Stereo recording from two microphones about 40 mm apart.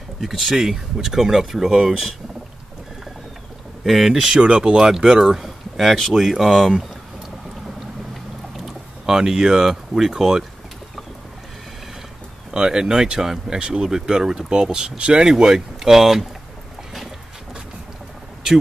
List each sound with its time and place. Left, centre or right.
0.2 s speech: centre
3.8 s speech: centre
4.4 s speech: centre
5.2 s speech: centre
8.5 s speech: centre
12.4 s speech: centre